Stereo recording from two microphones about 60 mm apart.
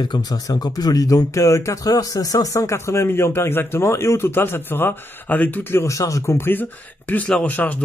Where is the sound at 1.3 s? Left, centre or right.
Left.